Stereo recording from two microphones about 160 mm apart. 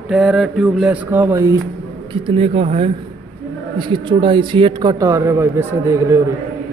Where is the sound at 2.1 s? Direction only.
35° right (ahead or behind); by 6.2 s 20° right (ahead or behind).